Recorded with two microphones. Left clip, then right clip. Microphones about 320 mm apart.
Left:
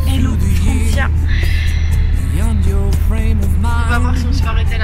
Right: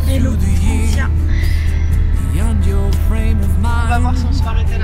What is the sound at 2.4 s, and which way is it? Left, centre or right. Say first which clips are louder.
Music: even; centre.